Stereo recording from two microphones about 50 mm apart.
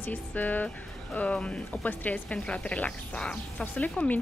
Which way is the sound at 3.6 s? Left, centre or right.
Left.